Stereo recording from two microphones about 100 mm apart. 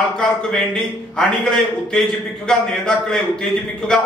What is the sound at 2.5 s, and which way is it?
Speech, 10° left (ahead or behind).